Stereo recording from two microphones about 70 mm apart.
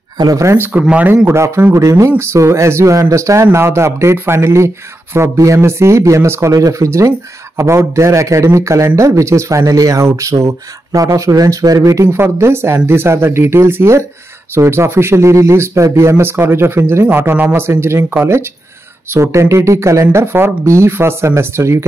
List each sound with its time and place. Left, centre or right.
1.0 s speech: right